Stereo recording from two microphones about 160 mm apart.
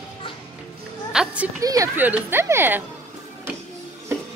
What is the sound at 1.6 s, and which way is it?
Speech, 20° right (ahead or behind).